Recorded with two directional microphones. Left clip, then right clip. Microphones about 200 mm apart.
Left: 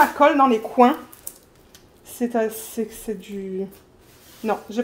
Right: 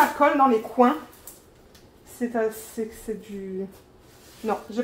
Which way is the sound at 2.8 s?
55° left (ahead or behind).